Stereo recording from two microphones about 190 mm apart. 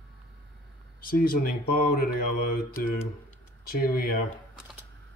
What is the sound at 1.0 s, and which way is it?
Speech, 50° left (ahead or behind).